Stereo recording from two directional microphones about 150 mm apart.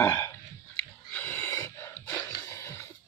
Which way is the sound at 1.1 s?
15° left (ahead or behind).